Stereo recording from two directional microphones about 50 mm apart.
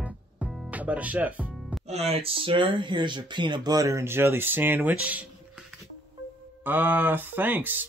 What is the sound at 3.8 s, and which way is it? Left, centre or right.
Speech, right.